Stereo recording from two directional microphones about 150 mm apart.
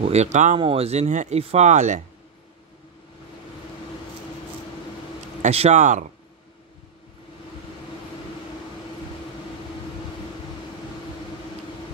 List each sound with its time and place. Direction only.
0.0 s speech: 45° right (ahead or behind)
0.6 s speech: 40° right (ahead or behind)
5.4 s speech: 45° right (ahead or behind)